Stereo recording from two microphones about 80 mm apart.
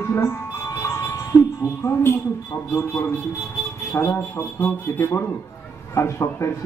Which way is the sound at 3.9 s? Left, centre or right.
Left.